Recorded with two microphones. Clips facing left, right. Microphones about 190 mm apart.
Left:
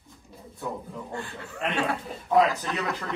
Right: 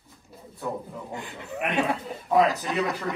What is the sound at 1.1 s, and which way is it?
Speech, 15° right (ahead or behind).